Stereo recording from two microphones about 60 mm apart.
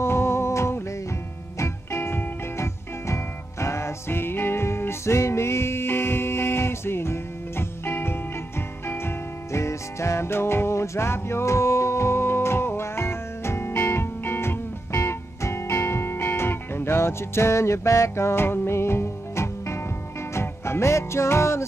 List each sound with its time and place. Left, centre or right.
0.0 s music: left